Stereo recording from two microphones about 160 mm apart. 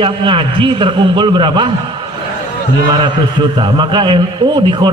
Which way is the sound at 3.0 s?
25° right (ahead or behind).